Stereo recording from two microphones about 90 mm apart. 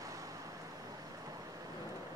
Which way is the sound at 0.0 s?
40° right (ahead or behind).